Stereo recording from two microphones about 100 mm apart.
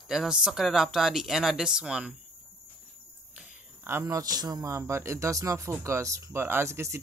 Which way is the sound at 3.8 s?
30° right (ahead or behind).